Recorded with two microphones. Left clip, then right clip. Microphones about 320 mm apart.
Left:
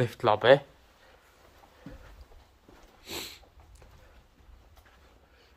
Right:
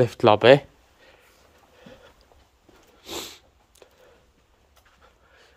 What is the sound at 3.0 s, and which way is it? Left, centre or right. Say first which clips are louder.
Dog: right 4 dB; centre.